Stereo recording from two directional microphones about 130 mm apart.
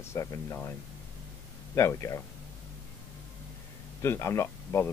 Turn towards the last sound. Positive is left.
turn(degrees=20)  # may be behind; listen again after turning